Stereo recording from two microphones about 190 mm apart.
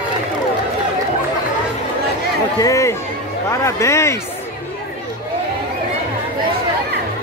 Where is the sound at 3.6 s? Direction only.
15° left (ahead or behind).